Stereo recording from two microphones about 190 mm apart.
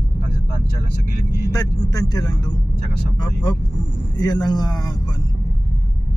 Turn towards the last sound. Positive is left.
turn(degrees=20)  # may be behind; listen again after turning